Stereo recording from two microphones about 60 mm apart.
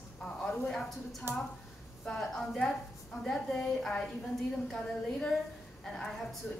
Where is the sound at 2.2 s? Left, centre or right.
Centre.